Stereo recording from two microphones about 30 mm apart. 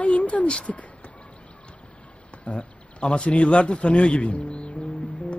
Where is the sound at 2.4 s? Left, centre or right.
Left.